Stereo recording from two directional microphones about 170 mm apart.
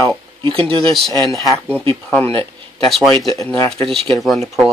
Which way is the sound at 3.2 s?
20° left (ahead or behind).